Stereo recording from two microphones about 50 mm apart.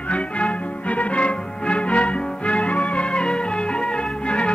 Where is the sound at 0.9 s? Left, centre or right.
Left.